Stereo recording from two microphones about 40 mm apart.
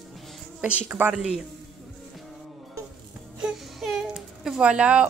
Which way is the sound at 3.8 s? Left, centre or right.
Centre.